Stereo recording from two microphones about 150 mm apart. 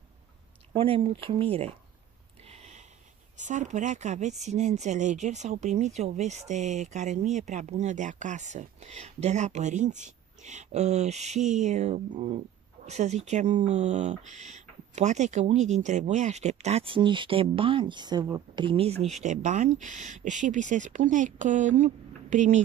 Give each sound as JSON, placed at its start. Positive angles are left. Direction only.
{"t": 0.7, "sound": "speech", "side_deg": -40}
{"t": 2.4, "sound": "a sound", "side_deg": -45}
{"t": 3.3, "sound": "speech", "side_deg": -55}